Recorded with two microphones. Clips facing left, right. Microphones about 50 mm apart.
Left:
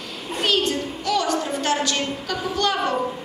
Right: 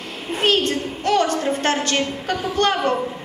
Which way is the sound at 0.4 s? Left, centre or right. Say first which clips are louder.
Right 3 dB; right.